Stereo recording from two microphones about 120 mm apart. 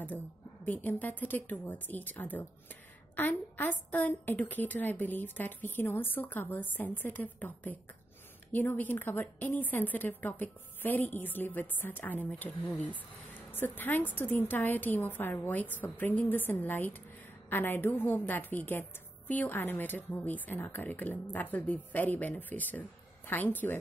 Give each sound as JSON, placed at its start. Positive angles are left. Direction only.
{"t": 0.7, "sound": "a woman's voice", "side_deg": 15}